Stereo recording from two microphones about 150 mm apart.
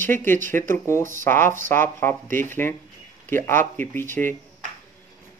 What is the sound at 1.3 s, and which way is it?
Speech, 15° left (ahead or behind).